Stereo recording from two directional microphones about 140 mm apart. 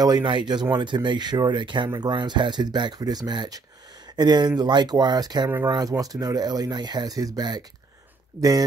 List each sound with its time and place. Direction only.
0.0 s speech: 30° right (ahead or behind)